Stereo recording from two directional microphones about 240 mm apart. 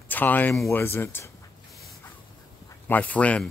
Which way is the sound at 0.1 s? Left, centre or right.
Centre.